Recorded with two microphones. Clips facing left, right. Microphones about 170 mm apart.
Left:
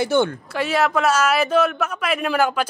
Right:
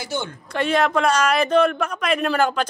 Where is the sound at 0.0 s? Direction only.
60° left (ahead or behind).